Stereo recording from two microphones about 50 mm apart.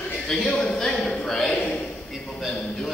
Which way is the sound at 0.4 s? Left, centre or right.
Centre.